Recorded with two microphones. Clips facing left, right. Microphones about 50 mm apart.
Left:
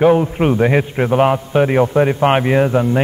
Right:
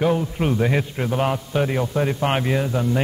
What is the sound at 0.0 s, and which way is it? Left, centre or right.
A man's voice, left.